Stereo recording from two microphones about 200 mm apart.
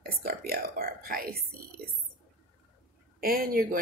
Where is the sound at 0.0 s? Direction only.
50° right (ahead or behind).